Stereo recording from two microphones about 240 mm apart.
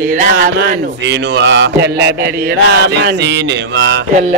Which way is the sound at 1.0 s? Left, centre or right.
Right.